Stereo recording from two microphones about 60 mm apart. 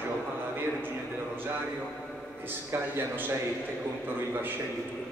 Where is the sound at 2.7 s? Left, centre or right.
Right.